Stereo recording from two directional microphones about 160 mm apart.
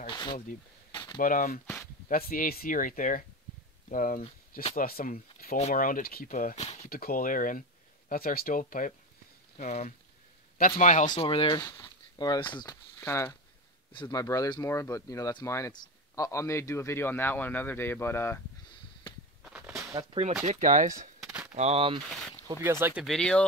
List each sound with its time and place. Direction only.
0.0 s a sound: 25° left (ahead or behind)
1.1 s speech: 60° left (ahead or behind)
5.6 s speech: 50° left (ahead or behind)
6.9 s a man's voice: 65° left (ahead or behind); by 11.1 s 50° left (ahead or behind)
11.1 s speech: 35° left (ahead or behind); by 18.4 s 15° left (ahead or behind)
19.4 s a sound: 5° right (ahead or behind)
20.0 s speech: 40° right (ahead or behind)
21.2 s gunshot: 10° right (ahead or behind)
21.5 s speech: 40° right (ahead or behind)
22.6 s speech: 15° right (ahead or behind)
23.0 s speech: 5° left (ahead or behind)